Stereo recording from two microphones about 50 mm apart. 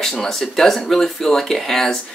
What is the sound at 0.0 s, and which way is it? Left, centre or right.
Speech, centre.